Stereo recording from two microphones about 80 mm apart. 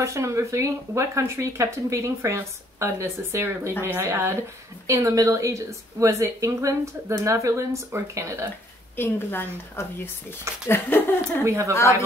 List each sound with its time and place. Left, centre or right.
0.0 s speech: right
8.9 s a woman's voice: left
11.4 s speech: right